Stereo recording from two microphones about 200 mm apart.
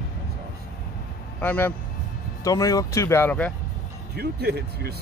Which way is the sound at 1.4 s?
10° left (ahead or behind).